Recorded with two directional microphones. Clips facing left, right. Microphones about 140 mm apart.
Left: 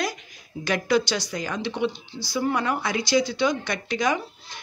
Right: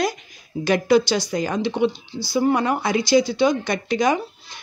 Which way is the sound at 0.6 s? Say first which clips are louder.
Right 6 dB; 30° right (ahead or behind).